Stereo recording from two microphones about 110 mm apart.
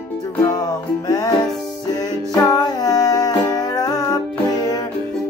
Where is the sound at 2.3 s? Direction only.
35° left (ahead or behind).